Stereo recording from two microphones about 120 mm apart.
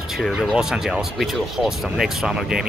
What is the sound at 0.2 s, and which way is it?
Speech, centre (ahead or behind).